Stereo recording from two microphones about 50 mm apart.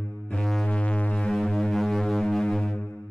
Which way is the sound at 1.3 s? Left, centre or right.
Centre.